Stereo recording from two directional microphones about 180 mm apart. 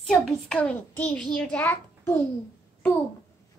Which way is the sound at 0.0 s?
5° left (ahead or behind).